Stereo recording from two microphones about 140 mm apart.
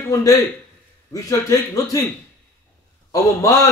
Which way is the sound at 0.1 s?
25° left (ahead or behind).